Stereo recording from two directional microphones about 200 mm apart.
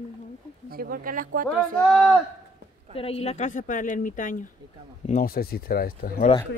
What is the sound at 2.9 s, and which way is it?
Speech, 30° left (ahead or behind).